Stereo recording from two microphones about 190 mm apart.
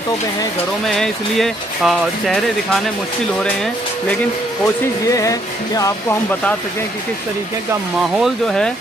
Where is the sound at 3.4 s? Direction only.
5° left (ahead or behind).